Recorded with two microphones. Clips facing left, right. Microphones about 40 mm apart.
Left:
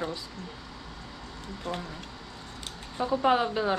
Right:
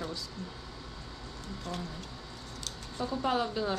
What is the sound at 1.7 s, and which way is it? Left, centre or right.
Speech, left.